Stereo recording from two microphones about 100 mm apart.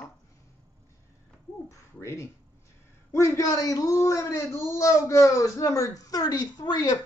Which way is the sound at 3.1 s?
35° left (ahead or behind).